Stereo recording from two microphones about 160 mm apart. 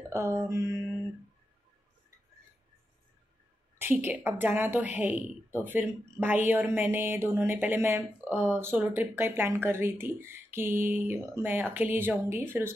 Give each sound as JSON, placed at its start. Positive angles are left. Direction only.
{"t": 0.1, "sound": "speech", "side_deg": -15}
{"t": 3.7, "sound": "a woman's voice", "side_deg": -10}